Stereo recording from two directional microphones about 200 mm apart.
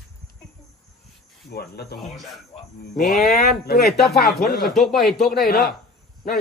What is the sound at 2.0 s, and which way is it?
A man's voice, centre (ahead or behind).